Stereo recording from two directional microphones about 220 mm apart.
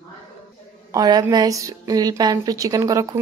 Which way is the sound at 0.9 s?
20° right (ahead or behind).